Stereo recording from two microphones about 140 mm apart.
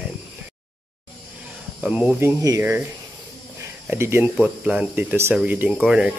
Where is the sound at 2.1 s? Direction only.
20° right (ahead or behind).